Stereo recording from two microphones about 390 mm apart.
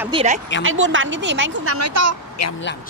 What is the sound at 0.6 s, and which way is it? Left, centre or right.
A woman's voice, right.